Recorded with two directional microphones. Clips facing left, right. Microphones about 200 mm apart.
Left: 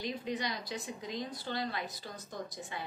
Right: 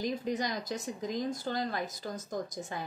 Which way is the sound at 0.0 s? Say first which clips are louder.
Right 4 dB; 45° right (ahead or behind).